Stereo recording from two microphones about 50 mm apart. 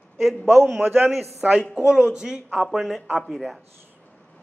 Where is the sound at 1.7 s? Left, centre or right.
Right.